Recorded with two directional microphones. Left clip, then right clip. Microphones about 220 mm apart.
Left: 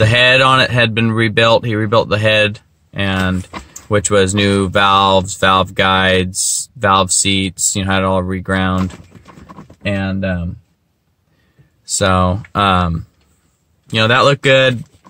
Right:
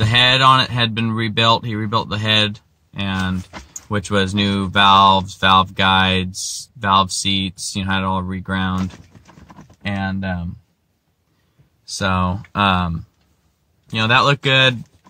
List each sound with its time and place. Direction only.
0.0 s speech: 15° left (ahead or behind)
12.0 s speech: 20° left (ahead or behind)